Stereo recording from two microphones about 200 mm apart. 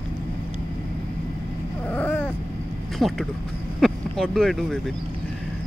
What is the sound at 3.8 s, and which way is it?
Speech, centre (ahead or behind).